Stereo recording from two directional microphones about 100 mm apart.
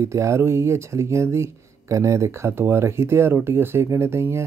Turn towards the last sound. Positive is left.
turn(degrees=-25)  # may be behind; listen again after turning